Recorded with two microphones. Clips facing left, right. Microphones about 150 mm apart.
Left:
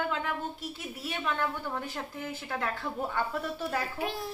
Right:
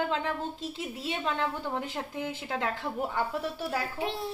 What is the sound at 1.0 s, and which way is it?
A woman's voice, 25° right (ahead or behind).